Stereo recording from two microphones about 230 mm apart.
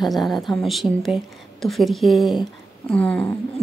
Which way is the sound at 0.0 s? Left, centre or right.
Centre.